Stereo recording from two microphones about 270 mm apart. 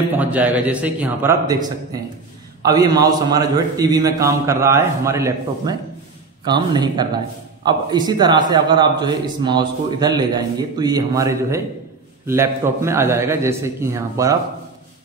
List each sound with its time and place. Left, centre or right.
0.1 s a man's voice: centre